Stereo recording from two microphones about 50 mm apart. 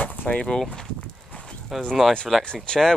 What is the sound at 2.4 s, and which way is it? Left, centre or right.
Speech, centre.